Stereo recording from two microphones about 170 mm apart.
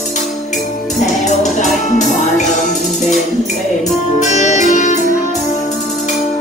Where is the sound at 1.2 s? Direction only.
45° left (ahead or behind).